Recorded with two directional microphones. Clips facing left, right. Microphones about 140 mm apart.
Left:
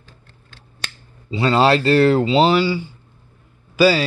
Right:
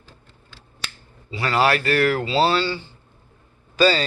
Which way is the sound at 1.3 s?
25° left (ahead or behind).